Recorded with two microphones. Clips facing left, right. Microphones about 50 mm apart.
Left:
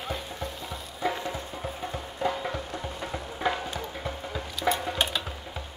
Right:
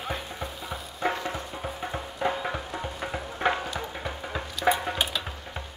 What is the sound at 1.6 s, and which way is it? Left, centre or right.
Music, right.